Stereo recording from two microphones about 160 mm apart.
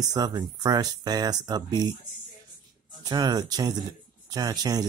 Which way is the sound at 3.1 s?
25° right (ahead or behind).